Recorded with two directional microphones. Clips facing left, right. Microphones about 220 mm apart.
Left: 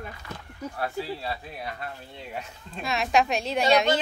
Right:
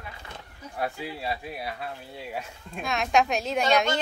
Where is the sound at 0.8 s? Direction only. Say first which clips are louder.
Even; 15° right (ahead or behind).